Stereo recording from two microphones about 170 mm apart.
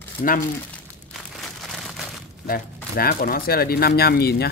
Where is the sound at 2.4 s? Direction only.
60° left (ahead or behind).